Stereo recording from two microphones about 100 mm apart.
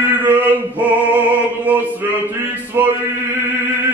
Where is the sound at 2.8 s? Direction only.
20° right (ahead or behind).